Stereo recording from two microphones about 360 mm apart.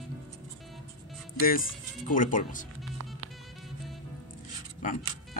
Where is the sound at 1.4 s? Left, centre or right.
Left.